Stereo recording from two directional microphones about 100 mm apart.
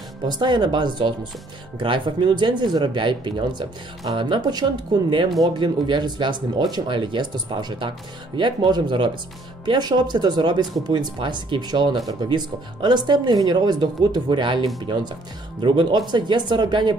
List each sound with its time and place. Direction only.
0.4 s speech: 50° right (ahead or behind)